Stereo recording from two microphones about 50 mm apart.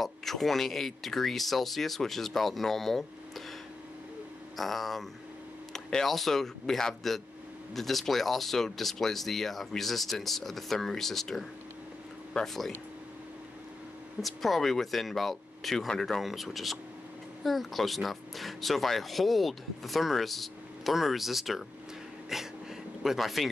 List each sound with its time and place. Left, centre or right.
0.0 s speech: centre
4.6 s speech: centre
14.2 s speech: centre
22.3 s a sound: centre
23.0 s speech: centre